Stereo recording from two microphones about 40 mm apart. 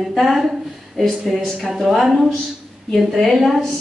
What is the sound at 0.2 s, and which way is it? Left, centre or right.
Speech, centre.